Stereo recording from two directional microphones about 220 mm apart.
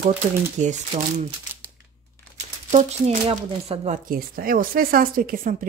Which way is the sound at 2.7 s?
30° right (ahead or behind).